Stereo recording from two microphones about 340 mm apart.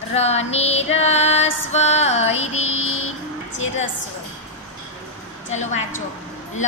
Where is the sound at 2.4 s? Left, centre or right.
Left.